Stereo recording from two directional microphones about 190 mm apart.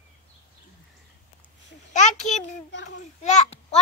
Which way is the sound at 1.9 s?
40° left (ahead or behind).